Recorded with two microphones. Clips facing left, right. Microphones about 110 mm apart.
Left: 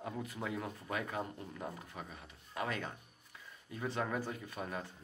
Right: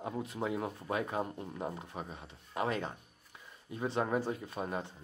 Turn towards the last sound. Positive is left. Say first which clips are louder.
# right 4 dB
turn(degrees=-25)  # may be behind; listen again after turning